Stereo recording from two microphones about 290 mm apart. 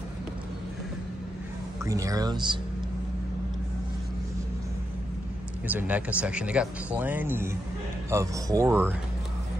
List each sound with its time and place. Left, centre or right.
1.9 s speech: centre
5.7 s speech: centre